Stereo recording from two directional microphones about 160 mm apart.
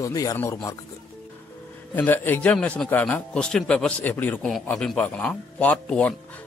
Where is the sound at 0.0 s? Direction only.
20° left (ahead or behind).